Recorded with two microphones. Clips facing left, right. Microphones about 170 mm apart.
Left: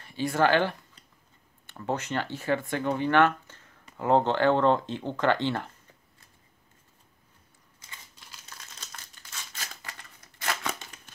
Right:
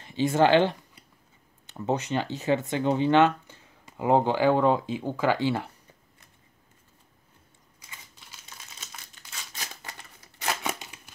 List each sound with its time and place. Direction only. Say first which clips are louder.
0.0 s speech: right 3 dB; 25° right (ahead or behind); by 5.7 s 10° right (ahead or behind)
8.3 s crumpling: left 1 dB; 5° right (ahead or behind)
9.6 s scissors: right 3 dB; 20° right (ahead or behind)
10.4 s a sound: right 2 dB; 15° right (ahead or behind)